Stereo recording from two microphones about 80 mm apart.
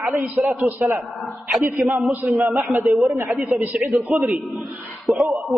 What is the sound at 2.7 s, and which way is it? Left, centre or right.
Speech, right.